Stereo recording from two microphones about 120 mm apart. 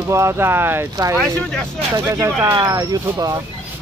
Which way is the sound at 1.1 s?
5° left (ahead or behind).